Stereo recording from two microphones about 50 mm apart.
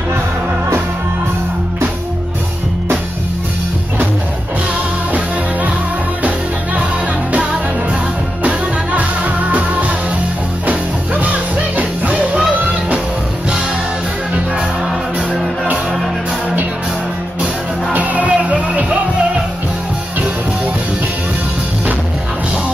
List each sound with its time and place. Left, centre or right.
8.5 s music: right
17.9 s music: right